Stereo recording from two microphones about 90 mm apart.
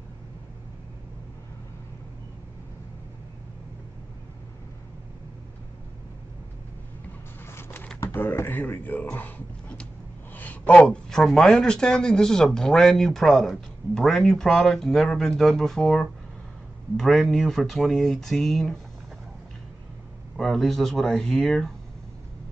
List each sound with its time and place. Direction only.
7.5 s a sound: 25° left (ahead or behind)
8.0 s speech: 25° left (ahead or behind); by 18.8 s centre (ahead or behind)
20.3 s speech: 5° left (ahead or behind)